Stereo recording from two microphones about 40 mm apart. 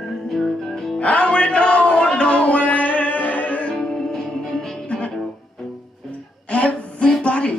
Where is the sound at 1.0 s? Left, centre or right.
Left.